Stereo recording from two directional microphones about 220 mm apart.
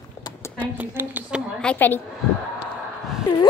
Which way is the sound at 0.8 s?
10° right (ahead or behind).